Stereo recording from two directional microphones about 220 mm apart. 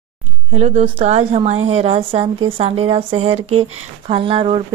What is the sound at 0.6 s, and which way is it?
A woman's voice, 30° right (ahead or behind).